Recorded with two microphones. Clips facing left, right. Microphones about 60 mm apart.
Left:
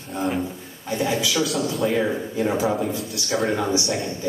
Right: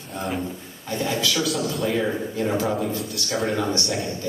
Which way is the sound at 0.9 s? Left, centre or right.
Centre.